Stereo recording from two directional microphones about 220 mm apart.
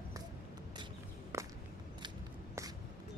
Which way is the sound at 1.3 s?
10° right (ahead or behind).